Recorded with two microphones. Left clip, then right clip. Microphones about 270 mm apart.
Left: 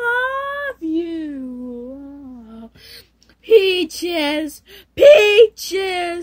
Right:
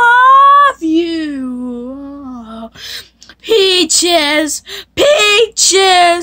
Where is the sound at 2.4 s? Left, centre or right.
Right.